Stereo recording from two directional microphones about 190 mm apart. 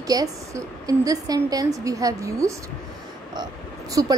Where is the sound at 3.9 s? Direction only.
20° right (ahead or behind).